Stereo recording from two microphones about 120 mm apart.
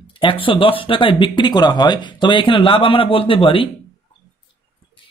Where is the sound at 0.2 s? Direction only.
45° left (ahead or behind).